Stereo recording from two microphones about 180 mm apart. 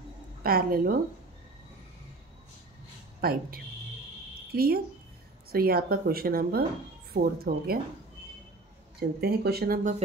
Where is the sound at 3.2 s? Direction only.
55° right (ahead or behind).